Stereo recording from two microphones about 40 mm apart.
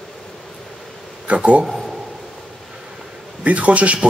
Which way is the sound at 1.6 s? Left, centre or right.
Centre.